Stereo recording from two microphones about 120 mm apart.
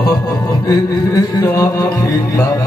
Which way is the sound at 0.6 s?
30° left (ahead or behind).